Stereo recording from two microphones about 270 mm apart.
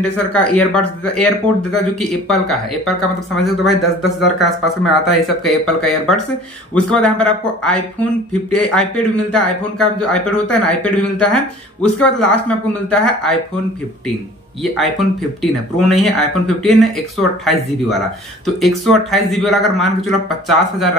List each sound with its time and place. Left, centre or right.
0.0 s speech: centre
14.6 s speech: centre
18.4 s speech: centre